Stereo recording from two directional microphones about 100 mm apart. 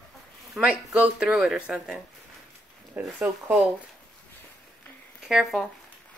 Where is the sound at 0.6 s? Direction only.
5° right (ahead or behind).